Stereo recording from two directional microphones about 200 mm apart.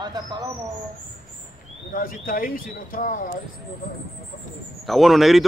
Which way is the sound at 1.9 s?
45° left (ahead or behind).